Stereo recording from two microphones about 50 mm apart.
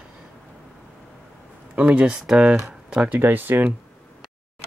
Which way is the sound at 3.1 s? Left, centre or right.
Right.